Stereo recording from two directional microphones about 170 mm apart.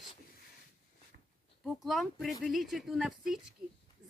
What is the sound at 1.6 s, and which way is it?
Speech, centre (ahead or behind).